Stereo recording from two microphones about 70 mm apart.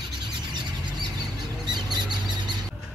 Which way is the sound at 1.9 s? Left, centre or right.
Right.